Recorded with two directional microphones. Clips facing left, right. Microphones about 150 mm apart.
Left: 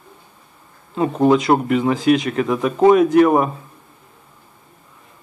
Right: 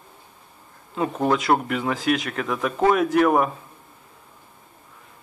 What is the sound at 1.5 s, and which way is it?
Speech, 5° left (ahead or behind).